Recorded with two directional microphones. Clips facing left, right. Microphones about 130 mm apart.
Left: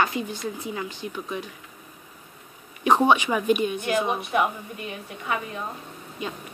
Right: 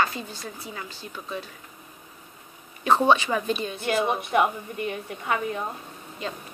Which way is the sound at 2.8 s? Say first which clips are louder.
Left 1 dB; 15° left (ahead or behind).